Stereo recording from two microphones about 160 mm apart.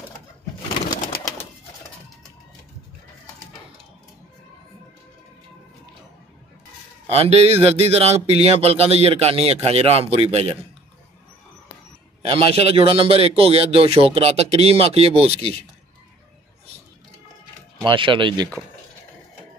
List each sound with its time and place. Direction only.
0.8 s pigeon: 20° left (ahead or behind)
7.1 s speech: 40° right (ahead or behind)
12.3 s speech: 35° right (ahead or behind)
17.7 s speech: 30° right (ahead or behind)